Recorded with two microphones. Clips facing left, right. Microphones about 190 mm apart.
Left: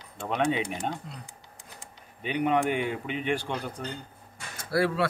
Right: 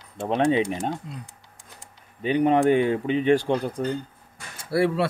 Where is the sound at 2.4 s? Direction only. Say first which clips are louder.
Right 7 dB; 40° right (ahead or behind).